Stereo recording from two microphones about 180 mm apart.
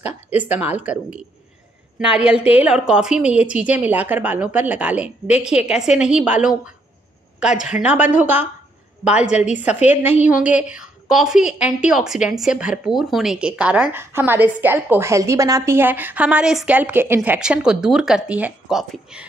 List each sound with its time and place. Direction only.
0.6 s a woman's voice: 10° right (ahead or behind)